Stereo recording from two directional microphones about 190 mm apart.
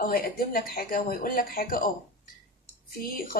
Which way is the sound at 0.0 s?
50° left (ahead or behind).